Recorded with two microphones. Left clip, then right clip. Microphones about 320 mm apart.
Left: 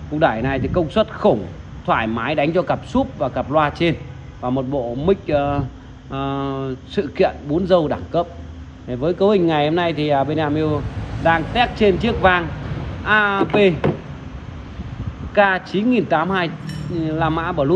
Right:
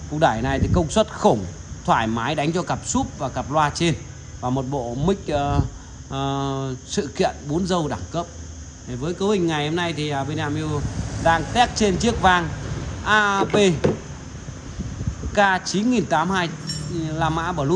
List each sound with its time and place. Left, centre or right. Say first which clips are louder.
0.2 s a man's voice: left 2 dB; centre
15.3 s speech: left 3 dB; centre